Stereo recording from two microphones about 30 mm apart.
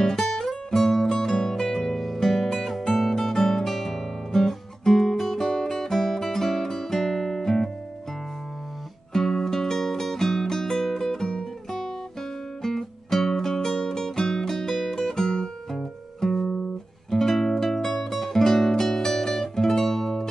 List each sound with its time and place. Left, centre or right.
0.0 s music: centre
9.1 s music: centre